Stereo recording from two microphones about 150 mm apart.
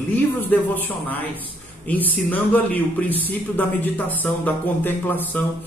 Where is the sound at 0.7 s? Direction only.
10° left (ahead or behind).